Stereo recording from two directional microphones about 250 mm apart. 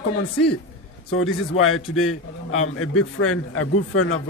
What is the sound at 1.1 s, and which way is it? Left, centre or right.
A man's voice, left.